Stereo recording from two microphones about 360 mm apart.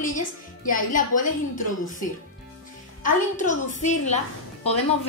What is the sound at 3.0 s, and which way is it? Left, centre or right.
A woman's voice, left.